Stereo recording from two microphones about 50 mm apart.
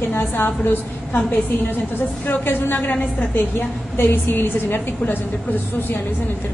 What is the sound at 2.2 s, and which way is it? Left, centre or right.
Speech, left.